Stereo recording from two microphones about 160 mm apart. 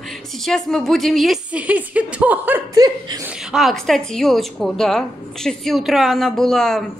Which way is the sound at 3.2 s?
Centre (ahead or behind).